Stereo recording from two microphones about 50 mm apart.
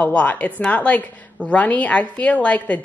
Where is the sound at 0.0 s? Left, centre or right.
Left.